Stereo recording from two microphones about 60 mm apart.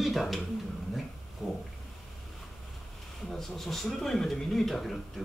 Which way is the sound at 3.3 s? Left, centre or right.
Centre.